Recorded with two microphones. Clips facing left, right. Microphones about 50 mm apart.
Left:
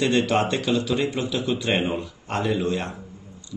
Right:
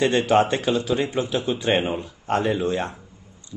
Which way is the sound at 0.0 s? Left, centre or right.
Right.